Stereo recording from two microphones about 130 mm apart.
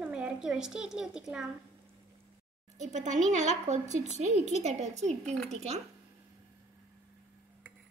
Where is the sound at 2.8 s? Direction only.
70° right (ahead or behind).